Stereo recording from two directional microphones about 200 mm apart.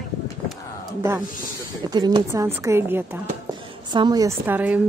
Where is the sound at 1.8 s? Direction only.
20° right (ahead or behind).